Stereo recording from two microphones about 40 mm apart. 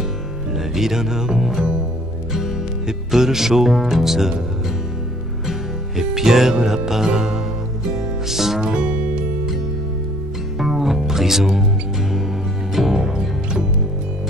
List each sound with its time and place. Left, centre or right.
0.7 s speech: centre
5.5 s music: centre
8.5 s music: right
10.6 s music: centre
12.7 s music: centre